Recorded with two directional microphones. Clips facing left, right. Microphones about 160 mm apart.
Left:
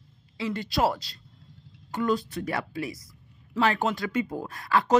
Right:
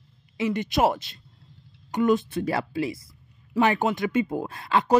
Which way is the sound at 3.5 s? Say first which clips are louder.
Right 3 dB; 15° right (ahead or behind).